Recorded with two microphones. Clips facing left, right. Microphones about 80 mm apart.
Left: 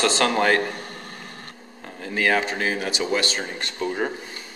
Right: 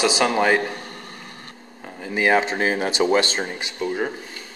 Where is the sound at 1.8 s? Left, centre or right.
Centre; by 3.4 s right.